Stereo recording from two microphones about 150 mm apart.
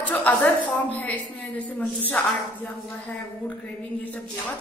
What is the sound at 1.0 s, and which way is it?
A woman's voice, 10° left (ahead or behind).